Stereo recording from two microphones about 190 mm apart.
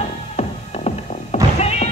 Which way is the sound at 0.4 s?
35° left (ahead or behind).